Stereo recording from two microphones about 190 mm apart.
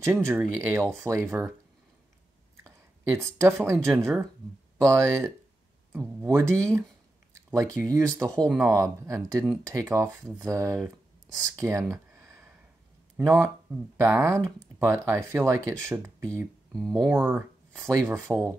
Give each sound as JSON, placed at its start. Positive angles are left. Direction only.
{"t": 0.0, "sound": "speech", "side_deg": -10}
{"t": 2.5, "sound": "speech", "side_deg": -15}
{"t": 11.9, "sound": "a sound", "side_deg": -15}
{"t": 13.9, "sound": "speech", "side_deg": -15}
{"t": 16.7, "sound": "speech", "side_deg": 0}
{"t": 17.3, "sound": "speech", "side_deg": -10}